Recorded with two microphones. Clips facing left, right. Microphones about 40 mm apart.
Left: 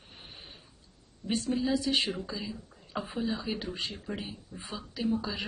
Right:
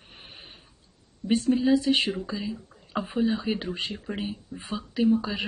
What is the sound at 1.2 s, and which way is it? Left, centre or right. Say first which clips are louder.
Speech: right 7 dB; right.